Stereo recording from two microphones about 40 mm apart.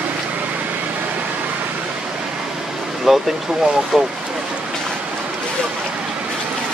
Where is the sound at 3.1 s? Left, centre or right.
Centre.